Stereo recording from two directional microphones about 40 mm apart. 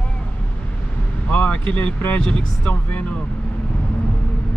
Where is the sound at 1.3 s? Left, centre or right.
Left.